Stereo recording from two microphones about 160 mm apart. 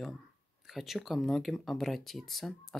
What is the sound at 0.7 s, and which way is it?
Speech, centre (ahead or behind).